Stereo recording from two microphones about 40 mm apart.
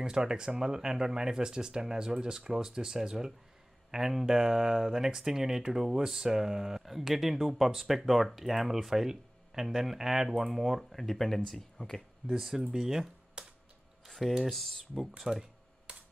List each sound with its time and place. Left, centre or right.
0.0 s speech: centre
12.3 s speech: centre
13.4 s typewriter: right
14.5 s speech: centre
15.9 s typewriter: right